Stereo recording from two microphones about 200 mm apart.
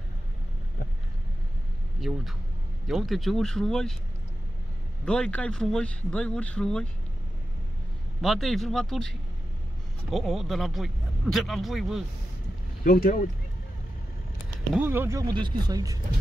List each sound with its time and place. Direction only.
2.0 s speech: centre (ahead or behind)
5.0 s speech: 5° left (ahead or behind)
8.2 s speech: centre (ahead or behind)
10.1 s speech: centre (ahead or behind)
12.8 s speech: 45° left (ahead or behind)
14.7 s speech: 10° right (ahead or behind)